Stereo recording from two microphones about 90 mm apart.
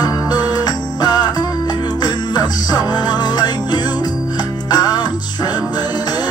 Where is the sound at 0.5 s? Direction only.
50° left (ahead or behind).